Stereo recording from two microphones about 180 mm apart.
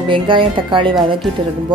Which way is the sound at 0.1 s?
30° right (ahead or behind).